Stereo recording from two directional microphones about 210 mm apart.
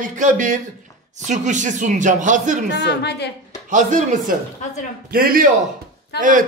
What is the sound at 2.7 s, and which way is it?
Speech, 55° left (ahead or behind).